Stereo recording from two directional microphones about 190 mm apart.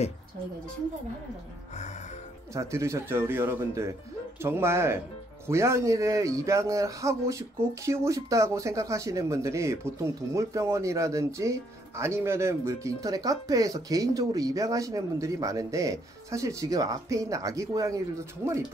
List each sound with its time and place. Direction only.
2.5 s speech: 15° right (ahead or behind)